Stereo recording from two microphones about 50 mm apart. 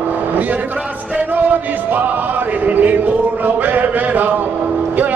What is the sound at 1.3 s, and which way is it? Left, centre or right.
Music, right.